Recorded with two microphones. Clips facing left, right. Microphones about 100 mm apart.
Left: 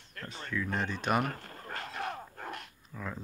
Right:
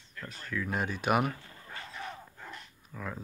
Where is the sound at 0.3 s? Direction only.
Centre (ahead or behind).